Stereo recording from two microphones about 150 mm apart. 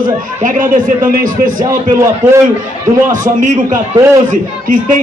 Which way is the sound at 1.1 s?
65° right (ahead or behind).